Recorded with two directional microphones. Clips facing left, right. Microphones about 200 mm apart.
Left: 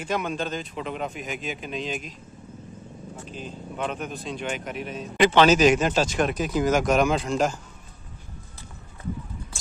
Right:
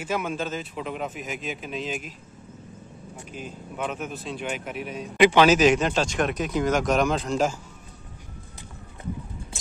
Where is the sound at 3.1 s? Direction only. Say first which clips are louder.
Even; 10° right (ahead or behind); by 7.3 s 10° left (ahead or behind).